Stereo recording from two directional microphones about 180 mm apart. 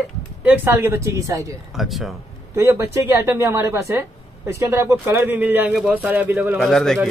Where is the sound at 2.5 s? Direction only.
15° right (ahead or behind).